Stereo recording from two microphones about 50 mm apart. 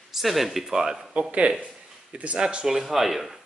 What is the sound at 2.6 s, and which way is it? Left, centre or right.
Speech, centre.